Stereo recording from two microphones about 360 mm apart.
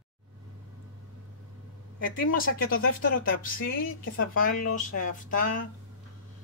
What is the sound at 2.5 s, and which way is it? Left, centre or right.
A woman's voice, left.